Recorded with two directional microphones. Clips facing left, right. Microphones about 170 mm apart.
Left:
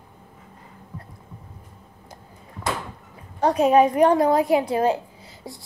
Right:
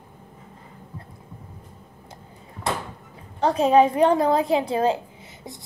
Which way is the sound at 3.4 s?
30° right (ahead or behind).